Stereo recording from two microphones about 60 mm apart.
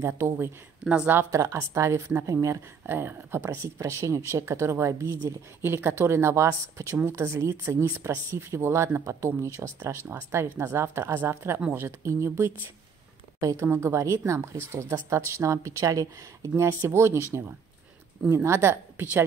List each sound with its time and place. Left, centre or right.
0.0 s speech: right
0.8 s speech: right
1.3 s speech: right
2.9 s speech: right
3.4 s speech: right
5.2 s speech: right
9.8 s speech: right
12.0 s speech: right
13.4 s speech: right
13.7 s speech: right
16.6 s speech: right